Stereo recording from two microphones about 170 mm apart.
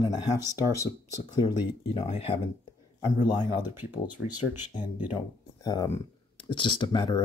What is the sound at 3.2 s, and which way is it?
Speech, 25° left (ahead or behind).